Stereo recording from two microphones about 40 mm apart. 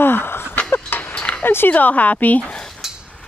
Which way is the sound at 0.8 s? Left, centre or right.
Left.